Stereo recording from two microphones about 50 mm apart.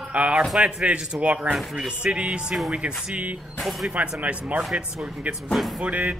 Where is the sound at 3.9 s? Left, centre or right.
Right.